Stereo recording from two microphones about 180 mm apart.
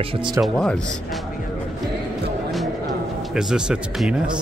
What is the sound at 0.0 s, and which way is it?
Speech, 30° right (ahead or behind).